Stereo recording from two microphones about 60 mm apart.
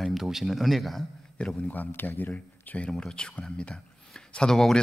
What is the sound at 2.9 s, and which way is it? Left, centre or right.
Speech, centre.